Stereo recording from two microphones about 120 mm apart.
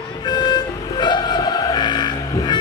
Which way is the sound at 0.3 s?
35° left (ahead or behind).